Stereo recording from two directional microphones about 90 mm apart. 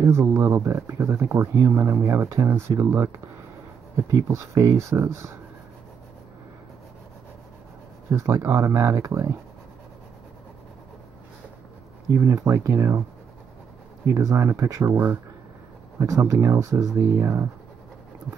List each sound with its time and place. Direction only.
0.0 s speech: 30° right (ahead or behind)
8.1 s speech: 30° right (ahead or behind)
12.2 s speech: 30° right (ahead or behind)
14.0 s speech: 35° right (ahead or behind)
16.0 s speech: 35° right (ahead or behind)